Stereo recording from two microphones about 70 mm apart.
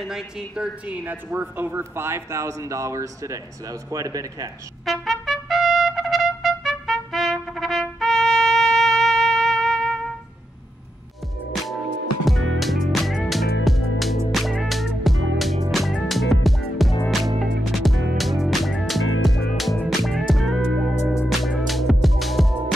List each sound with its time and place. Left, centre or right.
0.0 s a woman's voice: centre
0.8 s speech: right
4.8 s trumpet: centre
12.3 s music: centre